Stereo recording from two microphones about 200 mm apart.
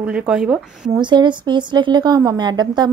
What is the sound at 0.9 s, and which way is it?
A woman's voice, 20° right (ahead or behind).